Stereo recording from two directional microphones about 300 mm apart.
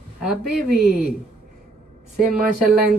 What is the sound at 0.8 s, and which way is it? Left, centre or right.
Speech, left.